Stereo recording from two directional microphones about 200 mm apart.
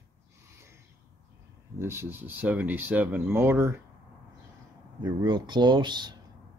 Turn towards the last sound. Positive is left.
turn(degrees=-20)  # may be behind; listen again after turning